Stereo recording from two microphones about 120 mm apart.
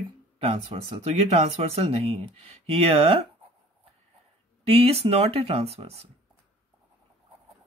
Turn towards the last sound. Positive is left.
turn(degrees=-60)  # may be behind; listen again after turning